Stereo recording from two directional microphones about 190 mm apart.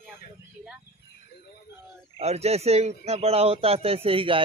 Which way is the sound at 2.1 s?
35° right (ahead or behind).